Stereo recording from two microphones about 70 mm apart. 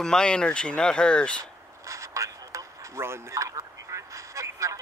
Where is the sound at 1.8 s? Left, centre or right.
Right.